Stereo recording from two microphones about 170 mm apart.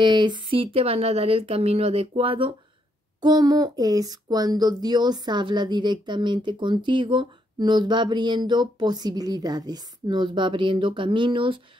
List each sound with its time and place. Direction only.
0.0 s speech: 25° right (ahead or behind)